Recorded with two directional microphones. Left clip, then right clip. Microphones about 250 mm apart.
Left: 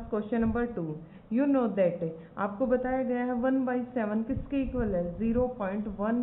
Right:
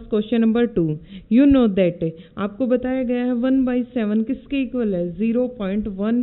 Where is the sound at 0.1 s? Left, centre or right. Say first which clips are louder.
Right 10 dB; right.